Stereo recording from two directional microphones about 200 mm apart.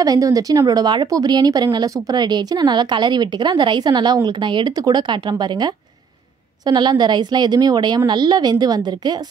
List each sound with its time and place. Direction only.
0.0 s speech: 15° right (ahead or behind)